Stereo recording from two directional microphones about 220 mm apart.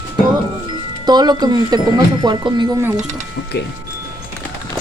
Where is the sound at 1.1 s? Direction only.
20° right (ahead or behind).